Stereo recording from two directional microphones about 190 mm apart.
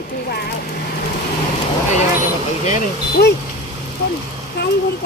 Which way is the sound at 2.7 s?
50° left (ahead or behind).